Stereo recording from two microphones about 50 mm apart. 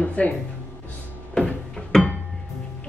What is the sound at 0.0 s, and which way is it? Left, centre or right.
Speech, left.